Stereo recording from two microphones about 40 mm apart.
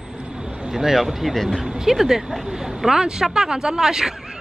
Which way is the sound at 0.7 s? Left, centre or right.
Centre.